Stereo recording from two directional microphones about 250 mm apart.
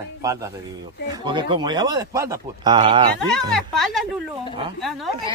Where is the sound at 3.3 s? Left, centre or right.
Centre.